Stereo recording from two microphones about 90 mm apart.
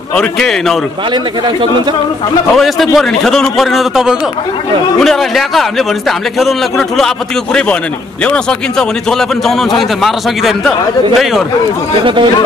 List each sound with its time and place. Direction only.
0.1 s a man's voice: 10° left (ahead or behind)
1.1 s speech: 55° right (ahead or behind)
2.5 s a man's voice: centre (ahead or behind)
8.2 s a man's voice: 10° left (ahead or behind)
12.0 s speech: 70° right (ahead or behind)